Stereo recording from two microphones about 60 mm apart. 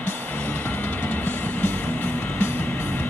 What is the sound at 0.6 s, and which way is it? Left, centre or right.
Music, left.